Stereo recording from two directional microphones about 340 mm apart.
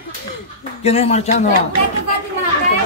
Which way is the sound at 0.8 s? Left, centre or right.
Centre.